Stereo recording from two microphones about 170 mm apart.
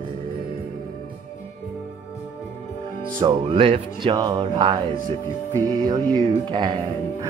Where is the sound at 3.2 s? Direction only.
35° right (ahead or behind).